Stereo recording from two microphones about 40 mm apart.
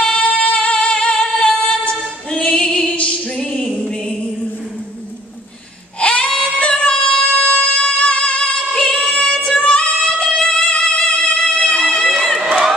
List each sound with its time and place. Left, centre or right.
0.0 s music: left
2.3 s female singing: left
3.6 s music: centre
5.9 s a sound: left
6.6 s yodeling: left
7.3 s music: left
12.1 s crowd: centre